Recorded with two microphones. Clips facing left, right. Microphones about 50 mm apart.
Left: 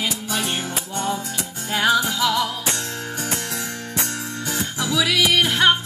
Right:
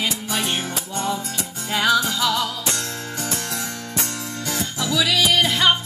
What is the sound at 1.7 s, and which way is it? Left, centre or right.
Music, left.